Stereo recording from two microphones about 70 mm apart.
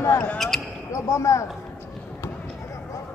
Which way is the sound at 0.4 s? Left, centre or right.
Centre.